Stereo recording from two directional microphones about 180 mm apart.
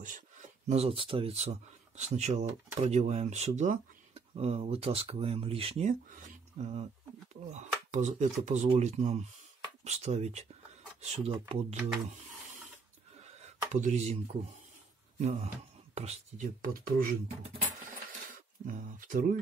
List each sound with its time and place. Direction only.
0.7 s speech: 35° right (ahead or behind)
13.2 s a sound: 40° right (ahead or behind)
15.1 s speech: 40° right (ahead or behind)
16.6 s speech: 55° right (ahead or behind)
18.3 s speech: 50° right (ahead or behind)